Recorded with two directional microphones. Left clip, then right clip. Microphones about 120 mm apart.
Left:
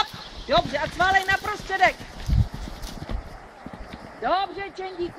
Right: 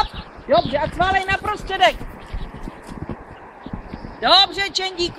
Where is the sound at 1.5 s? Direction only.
40° right (ahead or behind).